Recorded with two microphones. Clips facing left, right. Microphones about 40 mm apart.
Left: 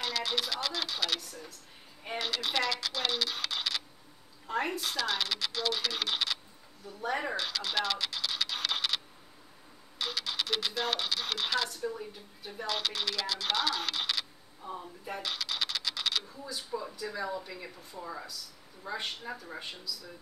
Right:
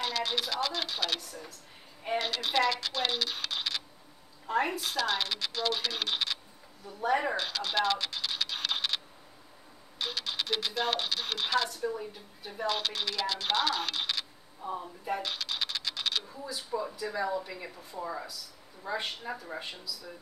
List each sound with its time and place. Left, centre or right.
0.0 s speech: centre